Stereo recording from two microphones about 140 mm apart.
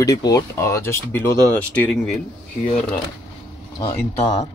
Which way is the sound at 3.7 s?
20° left (ahead or behind).